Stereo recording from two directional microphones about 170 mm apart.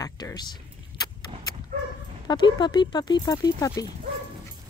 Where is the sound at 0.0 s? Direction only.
20° left (ahead or behind).